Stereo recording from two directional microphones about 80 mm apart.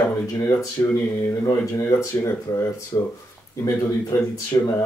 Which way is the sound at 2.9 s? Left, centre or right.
Left.